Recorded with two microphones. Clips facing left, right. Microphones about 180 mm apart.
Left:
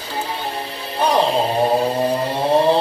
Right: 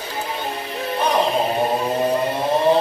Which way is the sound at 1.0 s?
30° left (ahead or behind).